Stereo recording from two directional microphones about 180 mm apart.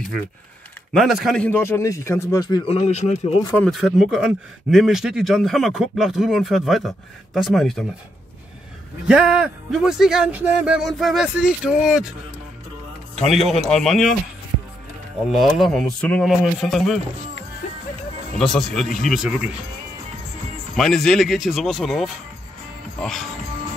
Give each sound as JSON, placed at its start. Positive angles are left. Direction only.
{"t": 0.9, "sound": "a man's voice", "side_deg": 0}
{"t": 2.7, "sound": "speech", "side_deg": 35}
{"t": 3.5, "sound": "speech", "side_deg": 0}
{"t": 9.0, "sound": "speech", "side_deg": -5}
{"t": 13.1, "sound": "a man's voice", "side_deg": 0}
{"t": 15.3, "sound": "speech", "side_deg": 0}
{"t": 18.4, "sound": "speech", "side_deg": 0}
{"t": 20.7, "sound": "speech", "side_deg": 0}